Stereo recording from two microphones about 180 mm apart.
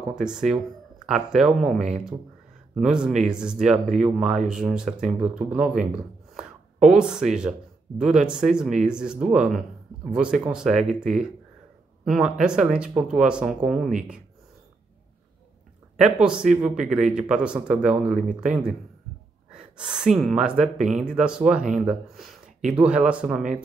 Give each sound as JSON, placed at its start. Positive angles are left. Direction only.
{"t": 0.1, "sound": "speech", "side_deg": -5}
{"t": 6.3, "sound": "a sound", "side_deg": -5}
{"t": 8.0, "sound": "speech", "side_deg": -5}
{"t": 16.0, "sound": "speech", "side_deg": -5}